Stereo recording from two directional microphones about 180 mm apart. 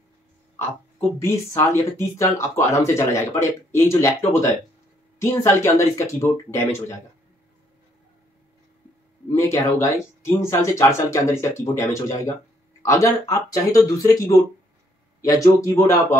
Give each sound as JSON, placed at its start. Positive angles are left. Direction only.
{"t": 0.6, "sound": "speech", "side_deg": 15}
{"t": 9.3, "sound": "speech", "side_deg": 15}